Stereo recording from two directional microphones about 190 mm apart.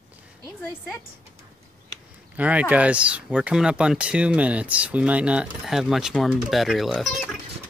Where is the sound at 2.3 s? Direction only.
10° right (ahead or behind).